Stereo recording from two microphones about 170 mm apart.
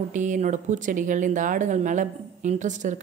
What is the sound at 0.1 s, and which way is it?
A woman's voice, 45° right (ahead or behind).